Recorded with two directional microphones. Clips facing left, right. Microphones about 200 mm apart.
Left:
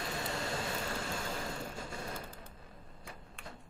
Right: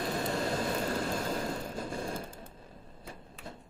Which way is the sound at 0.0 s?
35° right (ahead or behind).